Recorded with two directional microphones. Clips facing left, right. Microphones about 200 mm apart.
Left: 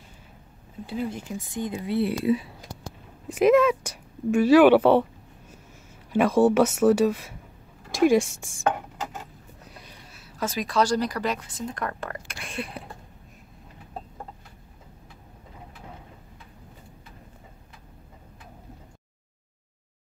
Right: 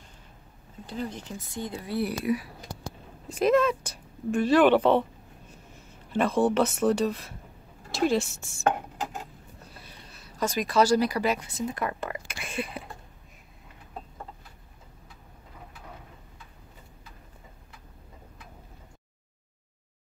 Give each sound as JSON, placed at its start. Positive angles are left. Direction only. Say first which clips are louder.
{"t": 0.8, "sound": "a woman's voice", "louder": "left 4 dB", "side_deg": 10}
{"t": 9.7, "sound": "a sound", "louder": "left 4 dB", "side_deg": 15}
{"t": 10.1, "sound": "speech", "louder": "right 1 dB", "side_deg": 5}